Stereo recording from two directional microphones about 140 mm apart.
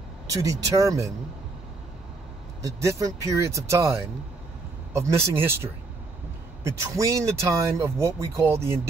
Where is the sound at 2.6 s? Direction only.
25° right (ahead or behind).